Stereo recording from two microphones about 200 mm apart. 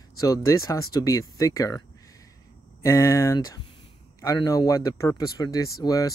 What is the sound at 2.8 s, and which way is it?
Speech, 15° left (ahead or behind).